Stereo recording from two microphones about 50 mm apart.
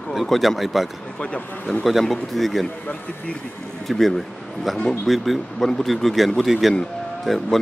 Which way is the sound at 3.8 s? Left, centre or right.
Centre.